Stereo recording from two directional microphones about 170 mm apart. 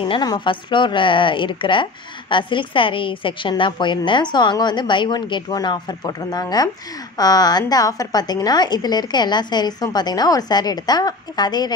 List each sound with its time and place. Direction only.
0.0 s a woman's voice: 25° left (ahead or behind)